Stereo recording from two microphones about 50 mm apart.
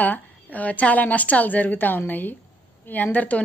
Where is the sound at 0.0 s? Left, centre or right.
Left.